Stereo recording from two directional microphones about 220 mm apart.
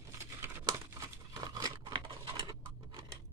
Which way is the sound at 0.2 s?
10° right (ahead or behind).